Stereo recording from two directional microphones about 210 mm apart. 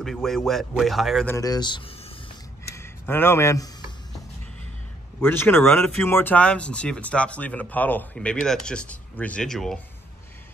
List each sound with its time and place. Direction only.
0.0 s speech: centre (ahead or behind)
1.3 s speech: 20° left (ahead or behind)
5.2 s speech: 10° left (ahead or behind)